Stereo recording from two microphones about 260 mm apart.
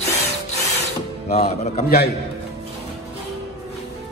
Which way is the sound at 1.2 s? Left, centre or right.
Left.